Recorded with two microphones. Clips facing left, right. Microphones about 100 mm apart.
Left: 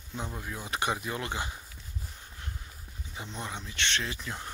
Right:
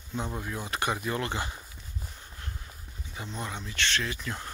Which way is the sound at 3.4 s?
20° left (ahead or behind).